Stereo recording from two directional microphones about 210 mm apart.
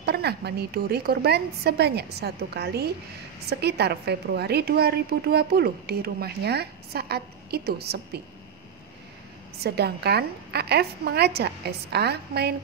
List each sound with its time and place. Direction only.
0.0 s a woman's voice: 50° right (ahead or behind)
9.6 s a woman's voice: 50° right (ahead or behind)